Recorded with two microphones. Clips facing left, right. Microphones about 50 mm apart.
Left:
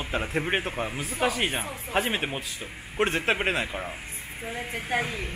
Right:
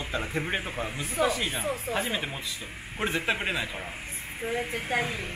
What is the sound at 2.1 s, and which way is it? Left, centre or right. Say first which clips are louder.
Speech: left 3 dB; left.